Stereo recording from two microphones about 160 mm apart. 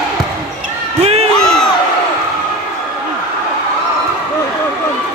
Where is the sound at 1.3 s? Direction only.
5° left (ahead or behind).